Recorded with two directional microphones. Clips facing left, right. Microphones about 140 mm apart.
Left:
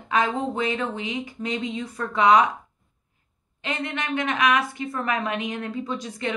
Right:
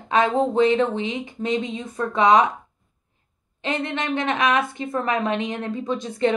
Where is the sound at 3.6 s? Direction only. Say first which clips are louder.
Right 4 dB; 25° right (ahead or behind).